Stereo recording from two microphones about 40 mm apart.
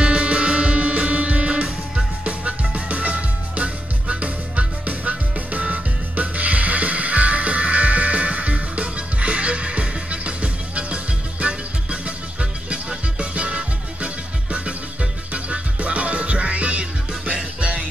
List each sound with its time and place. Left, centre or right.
0.0 s music: right